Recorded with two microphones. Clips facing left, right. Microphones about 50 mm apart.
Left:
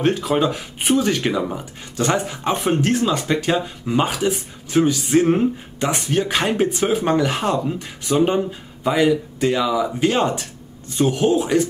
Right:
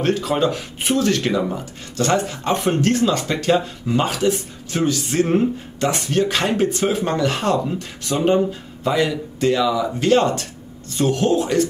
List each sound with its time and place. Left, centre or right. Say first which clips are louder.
0.0 s speech: even; centre